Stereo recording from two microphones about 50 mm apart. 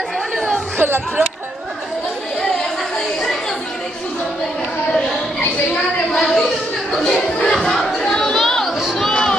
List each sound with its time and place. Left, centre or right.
0.7 s speech: right
6.1 s a sound: centre
6.9 s chatter: centre